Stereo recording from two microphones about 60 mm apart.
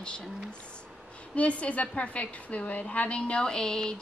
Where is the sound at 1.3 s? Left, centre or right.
Left.